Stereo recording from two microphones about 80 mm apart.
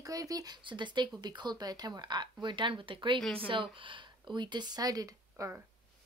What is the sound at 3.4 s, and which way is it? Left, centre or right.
Speech, right.